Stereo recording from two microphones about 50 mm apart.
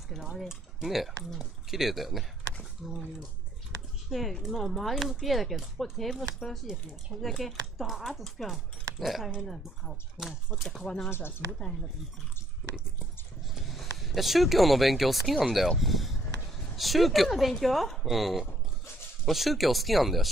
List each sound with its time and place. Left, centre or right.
0.1 s speech: centre
4.1 s speech: centre
6.7 s speech: centre
7.2 s speech: centre
11.1 s speech: left
13.6 s speech: centre
15.8 s a sound: centre
16.7 s speech: centre